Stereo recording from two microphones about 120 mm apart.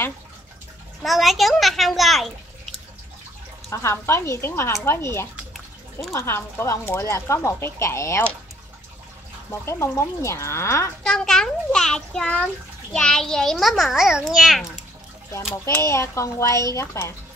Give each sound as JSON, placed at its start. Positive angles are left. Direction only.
{"t": 1.0, "sound": "a child's voice", "side_deg": 0}
{"t": 3.7, "sound": "speech", "side_deg": 20}
{"t": 5.5, "sound": "bathtub", "side_deg": 0}
{"t": 6.1, "sound": "speech", "side_deg": 20}
{"t": 9.5, "sound": "speech", "side_deg": 20}
{"t": 11.1, "sound": "a child's voice", "side_deg": 5}
{"t": 15.5, "sound": "speech", "side_deg": 20}